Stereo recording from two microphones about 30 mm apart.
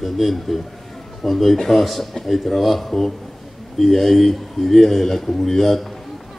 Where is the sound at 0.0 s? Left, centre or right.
Centre.